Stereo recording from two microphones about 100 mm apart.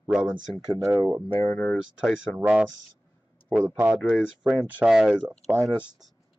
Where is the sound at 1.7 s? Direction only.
5° right (ahead or behind).